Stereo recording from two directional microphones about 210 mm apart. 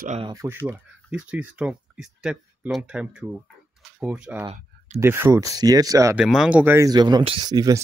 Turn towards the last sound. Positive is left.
turn(degrees=-20)  # may be behind; listen again after turning